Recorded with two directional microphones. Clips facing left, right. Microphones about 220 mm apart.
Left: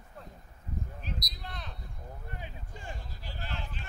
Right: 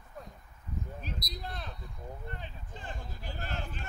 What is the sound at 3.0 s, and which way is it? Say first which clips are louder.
Speech: right 3 dB; 50° right (ahead or behind).